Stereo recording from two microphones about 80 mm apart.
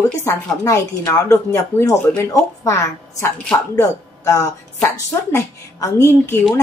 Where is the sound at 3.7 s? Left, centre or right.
Left.